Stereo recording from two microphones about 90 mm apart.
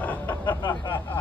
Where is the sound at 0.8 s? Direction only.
65° left (ahead or behind).